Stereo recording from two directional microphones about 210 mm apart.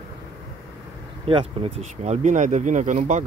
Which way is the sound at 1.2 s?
25° right (ahead or behind).